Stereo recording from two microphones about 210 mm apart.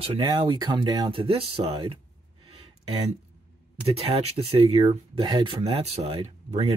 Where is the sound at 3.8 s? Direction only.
30° right (ahead or behind).